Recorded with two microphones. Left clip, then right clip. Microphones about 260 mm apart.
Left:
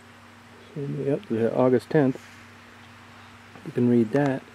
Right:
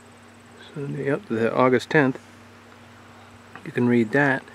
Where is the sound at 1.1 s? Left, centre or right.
Centre.